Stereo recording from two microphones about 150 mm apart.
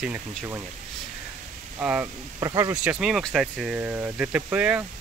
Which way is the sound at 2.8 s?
5° right (ahead or behind).